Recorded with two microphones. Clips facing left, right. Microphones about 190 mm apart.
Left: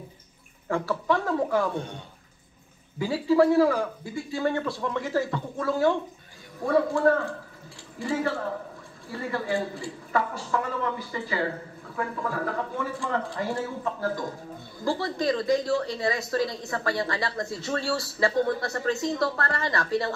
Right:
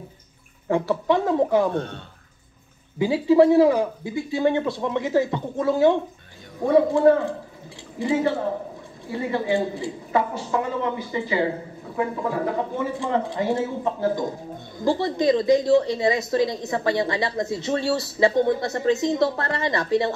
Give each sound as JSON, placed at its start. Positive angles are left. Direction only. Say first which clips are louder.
{"t": 0.7, "sound": "a woman's voice", "louder": "right 5 dB", "side_deg": -20}
{"t": 3.0, "sound": "a woman's voice", "louder": "right 5 dB", "side_deg": -20}